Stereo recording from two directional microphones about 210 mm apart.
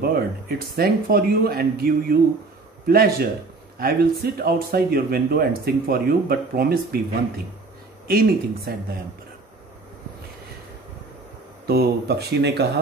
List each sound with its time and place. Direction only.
0.0 s speech: 45° right (ahead or behind)
11.6 s speech: 50° right (ahead or behind)